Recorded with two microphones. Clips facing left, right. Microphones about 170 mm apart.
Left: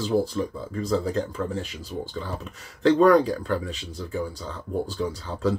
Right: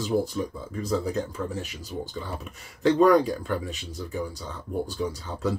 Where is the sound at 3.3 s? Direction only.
10° right (ahead or behind).